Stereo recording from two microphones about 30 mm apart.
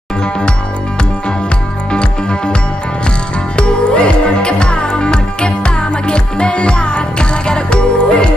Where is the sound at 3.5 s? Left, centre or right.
Left.